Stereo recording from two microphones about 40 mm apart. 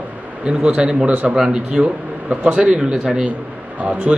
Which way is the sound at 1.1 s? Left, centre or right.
Right.